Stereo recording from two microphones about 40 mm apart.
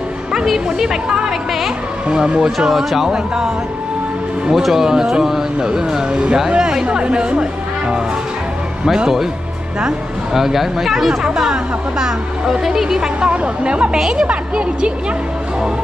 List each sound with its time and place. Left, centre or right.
0.7 s speech: centre
2.7 s speech: centre
3.1 s speech: centre
4.5 s speech: centre; by 7.4 s right
10.3 s speech: centre
11.2 s speech: centre
13.2 s speech: right
13.9 s speech: centre
14.2 s speech: right